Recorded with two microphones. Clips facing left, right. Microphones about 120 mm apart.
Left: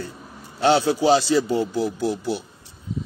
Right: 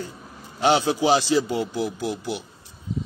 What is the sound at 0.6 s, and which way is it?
A man's voice, 15° right (ahead or behind).